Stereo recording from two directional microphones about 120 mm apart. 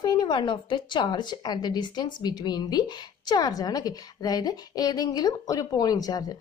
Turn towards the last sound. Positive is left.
turn(degrees=35)  # may be behind; listen again after turning